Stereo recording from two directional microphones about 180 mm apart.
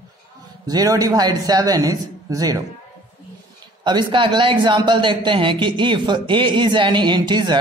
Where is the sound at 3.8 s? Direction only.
25° right (ahead or behind).